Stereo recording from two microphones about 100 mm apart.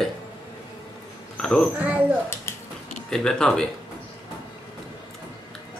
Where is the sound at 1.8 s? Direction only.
15° right (ahead or behind).